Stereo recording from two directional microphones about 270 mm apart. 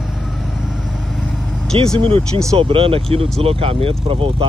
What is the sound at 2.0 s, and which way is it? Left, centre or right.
Speech, centre.